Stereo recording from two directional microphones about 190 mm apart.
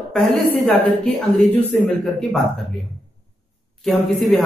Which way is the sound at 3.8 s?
Centre (ahead or behind).